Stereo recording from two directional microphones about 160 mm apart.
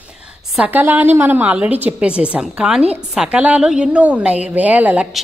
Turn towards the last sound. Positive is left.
turn(degrees=-10)  # may be behind; listen again after turning